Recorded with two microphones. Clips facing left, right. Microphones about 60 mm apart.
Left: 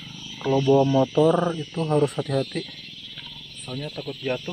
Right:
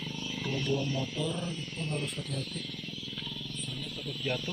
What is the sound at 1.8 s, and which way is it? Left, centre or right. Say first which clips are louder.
Speech: left 16 dB; left.